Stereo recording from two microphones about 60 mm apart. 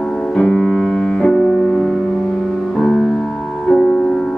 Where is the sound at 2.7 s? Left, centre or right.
Centre.